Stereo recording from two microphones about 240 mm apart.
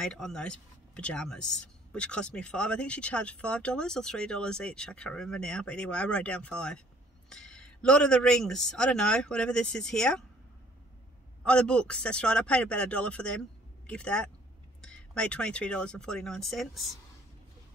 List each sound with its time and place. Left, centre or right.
0.0 s speech: centre
11.4 s speech: centre